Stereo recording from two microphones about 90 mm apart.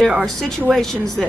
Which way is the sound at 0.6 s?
5° left (ahead or behind).